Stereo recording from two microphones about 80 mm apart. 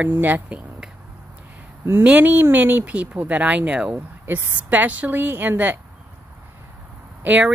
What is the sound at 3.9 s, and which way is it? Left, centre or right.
Speech, right.